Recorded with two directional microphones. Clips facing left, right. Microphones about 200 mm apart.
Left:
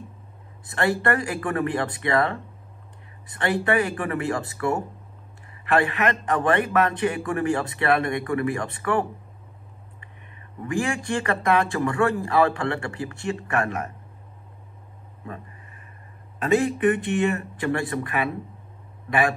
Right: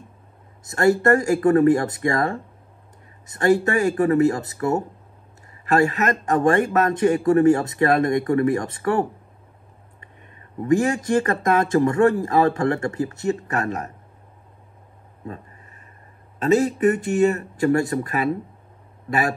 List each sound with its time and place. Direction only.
0.7 s a man's voice: 45° right (ahead or behind)
10.6 s speech: 40° right (ahead or behind)
16.4 s speech: 40° right (ahead or behind)